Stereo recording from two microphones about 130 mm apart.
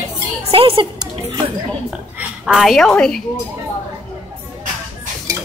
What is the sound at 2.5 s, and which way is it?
Speech, centre (ahead or behind).